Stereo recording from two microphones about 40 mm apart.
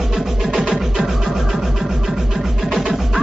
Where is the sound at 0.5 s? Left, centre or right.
Centre.